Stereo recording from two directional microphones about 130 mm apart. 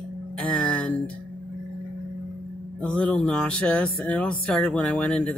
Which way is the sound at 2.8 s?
10° left (ahead or behind).